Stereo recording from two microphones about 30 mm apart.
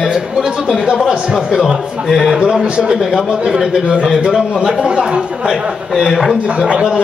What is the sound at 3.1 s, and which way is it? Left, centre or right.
Speech, centre.